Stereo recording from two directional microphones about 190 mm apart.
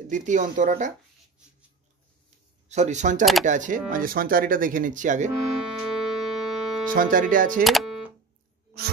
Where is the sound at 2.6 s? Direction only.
40° right (ahead or behind).